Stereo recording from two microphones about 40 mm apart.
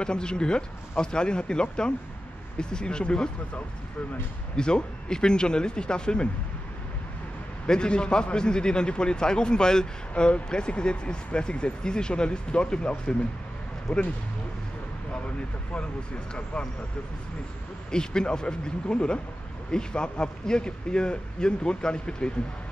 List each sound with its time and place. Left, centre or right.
0.0 s a man's voice: left
4.6 s a man's voice: left
7.6 s a man's voice: left
16.5 s a man's voice: left
17.9 s a man's voice: centre